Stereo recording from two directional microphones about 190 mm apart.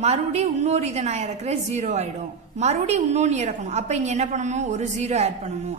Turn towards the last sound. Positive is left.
turn(degrees=-35)  # may be behind; listen again after turning